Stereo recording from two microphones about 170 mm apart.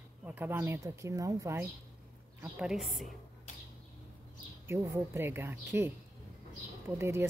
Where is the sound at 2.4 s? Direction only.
5° right (ahead or behind).